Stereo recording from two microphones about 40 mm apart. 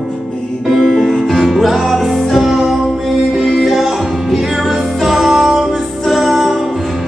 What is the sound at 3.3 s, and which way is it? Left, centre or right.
Music, centre.